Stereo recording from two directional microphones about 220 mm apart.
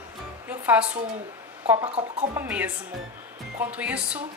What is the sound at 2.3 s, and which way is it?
A woman's voice, 5° right (ahead or behind).